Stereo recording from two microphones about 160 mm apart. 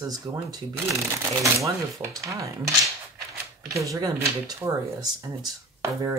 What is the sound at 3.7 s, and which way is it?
Speech, 20° right (ahead or behind).